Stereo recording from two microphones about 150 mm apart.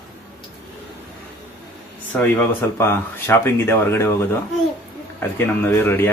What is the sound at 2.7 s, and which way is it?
Speech, 15° left (ahead or behind).